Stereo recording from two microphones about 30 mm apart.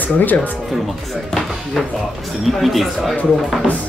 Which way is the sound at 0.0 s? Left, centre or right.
Left.